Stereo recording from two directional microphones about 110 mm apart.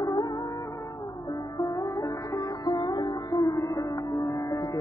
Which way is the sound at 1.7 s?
35° left (ahead or behind).